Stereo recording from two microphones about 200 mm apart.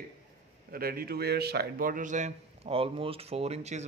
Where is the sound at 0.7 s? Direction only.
50° right (ahead or behind).